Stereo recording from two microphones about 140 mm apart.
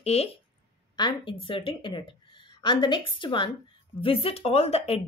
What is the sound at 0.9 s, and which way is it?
Speech, 35° left (ahead or behind).